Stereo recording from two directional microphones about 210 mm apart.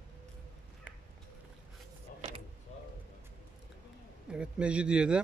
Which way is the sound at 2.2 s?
30° right (ahead or behind).